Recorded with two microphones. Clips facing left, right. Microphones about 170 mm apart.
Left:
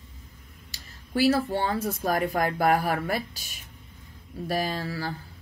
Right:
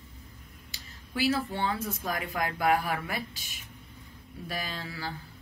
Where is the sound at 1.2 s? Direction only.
40° left (ahead or behind).